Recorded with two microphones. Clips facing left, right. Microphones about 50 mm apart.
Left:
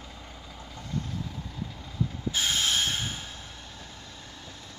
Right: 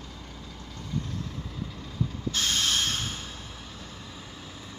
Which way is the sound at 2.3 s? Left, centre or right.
Centre.